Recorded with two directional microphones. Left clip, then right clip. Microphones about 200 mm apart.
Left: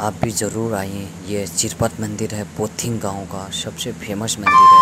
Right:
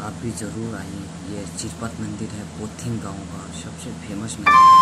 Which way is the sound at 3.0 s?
30° left (ahead or behind).